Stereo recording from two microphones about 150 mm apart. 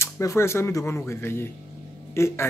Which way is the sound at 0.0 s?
20° left (ahead or behind).